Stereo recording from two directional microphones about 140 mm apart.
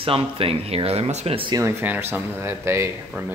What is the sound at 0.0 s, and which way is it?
Speech, 40° right (ahead or behind).